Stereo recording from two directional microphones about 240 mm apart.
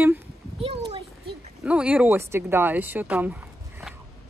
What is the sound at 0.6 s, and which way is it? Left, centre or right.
Speech, right.